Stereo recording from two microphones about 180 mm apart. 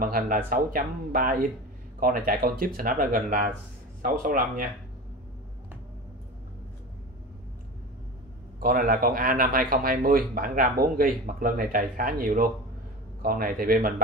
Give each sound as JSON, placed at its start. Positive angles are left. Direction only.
{"t": 0.0, "sound": "speech", "side_deg": -50}
{"t": 8.5, "sound": "speech", "side_deg": -50}